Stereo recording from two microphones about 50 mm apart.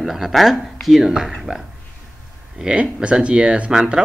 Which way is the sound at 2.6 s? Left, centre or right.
Centre.